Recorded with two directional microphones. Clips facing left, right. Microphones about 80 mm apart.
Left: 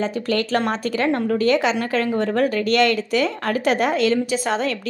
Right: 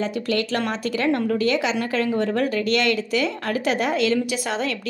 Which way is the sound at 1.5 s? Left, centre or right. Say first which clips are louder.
Left 3 dB; left.